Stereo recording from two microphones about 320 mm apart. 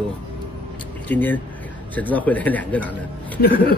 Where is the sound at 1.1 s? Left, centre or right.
Centre.